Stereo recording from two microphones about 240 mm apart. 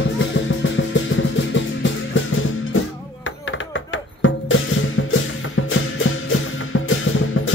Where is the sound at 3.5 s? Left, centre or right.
Left.